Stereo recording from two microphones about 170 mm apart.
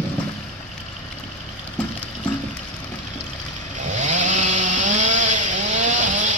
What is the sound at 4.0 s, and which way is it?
Chainsaw, 45° right (ahead or behind).